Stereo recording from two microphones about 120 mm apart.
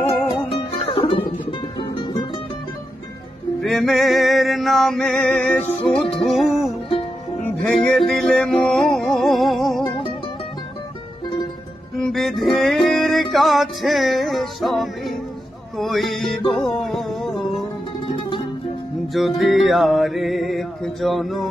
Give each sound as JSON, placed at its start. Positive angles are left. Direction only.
{"t": 0.0, "sound": "music", "side_deg": 50}
{"t": 3.6, "sound": "music", "side_deg": 0}
{"t": 7.4, "sound": "music", "side_deg": 10}
{"t": 12.0, "sound": "music", "side_deg": 0}
{"t": 19.1, "sound": "music", "side_deg": 0}